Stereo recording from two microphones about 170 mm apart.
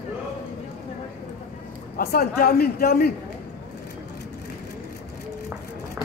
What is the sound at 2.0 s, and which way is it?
A man's voice, 60° left (ahead or behind).